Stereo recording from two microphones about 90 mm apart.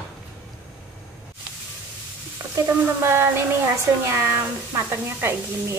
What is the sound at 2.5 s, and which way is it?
Speech, 30° right (ahead or behind).